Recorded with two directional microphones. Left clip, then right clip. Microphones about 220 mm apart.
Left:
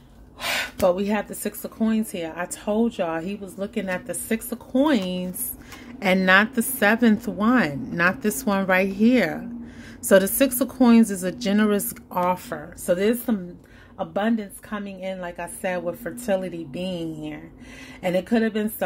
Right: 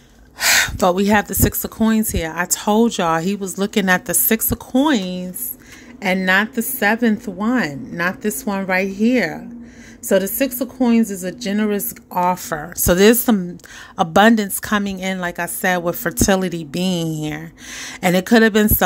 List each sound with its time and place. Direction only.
0.4 s a woman's voice: 35° right (ahead or behind); by 12.4 s 15° right (ahead or behind)
12.4 s a woman's voice: 35° right (ahead or behind)